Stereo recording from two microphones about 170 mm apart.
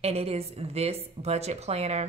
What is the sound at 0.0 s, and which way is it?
Speech, 35° right (ahead or behind).